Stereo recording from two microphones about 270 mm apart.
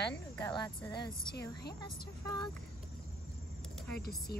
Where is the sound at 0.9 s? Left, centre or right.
Left.